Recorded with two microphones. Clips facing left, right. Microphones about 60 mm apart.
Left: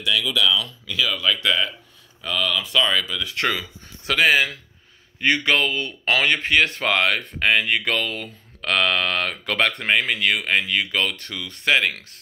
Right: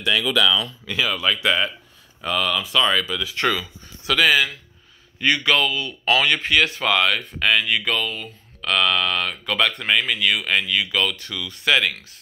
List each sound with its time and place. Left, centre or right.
0.0 s speech: right
0.8 s speech: right
2.6 s speech: centre
4.0 s speech: left
6.7 s speech: left
7.8 s speech: left
8.5 s speech: left
9.8 s speech: left
11.9 s speech: left